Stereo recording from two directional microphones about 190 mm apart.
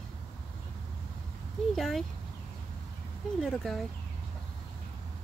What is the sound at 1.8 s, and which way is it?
Speech, centre (ahead or behind).